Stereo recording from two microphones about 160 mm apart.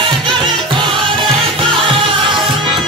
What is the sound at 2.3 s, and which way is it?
Music, centre (ahead or behind).